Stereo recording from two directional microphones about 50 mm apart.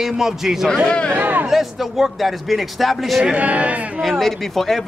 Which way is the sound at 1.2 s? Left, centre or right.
Right.